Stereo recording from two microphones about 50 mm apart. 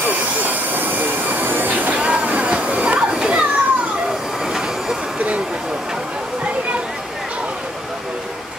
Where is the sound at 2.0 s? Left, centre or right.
Right.